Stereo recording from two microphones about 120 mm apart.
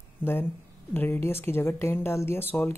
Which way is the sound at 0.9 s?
20° left (ahead or behind).